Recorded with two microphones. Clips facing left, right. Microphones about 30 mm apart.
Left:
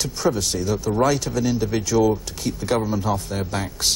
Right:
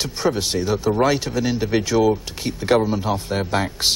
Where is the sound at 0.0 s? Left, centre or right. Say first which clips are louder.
Right 1 dB; right.